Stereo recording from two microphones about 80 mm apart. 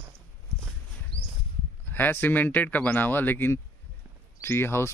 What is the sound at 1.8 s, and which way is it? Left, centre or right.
Speech, left.